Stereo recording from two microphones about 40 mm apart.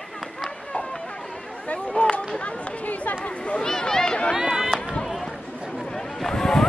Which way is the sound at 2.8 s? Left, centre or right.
Left.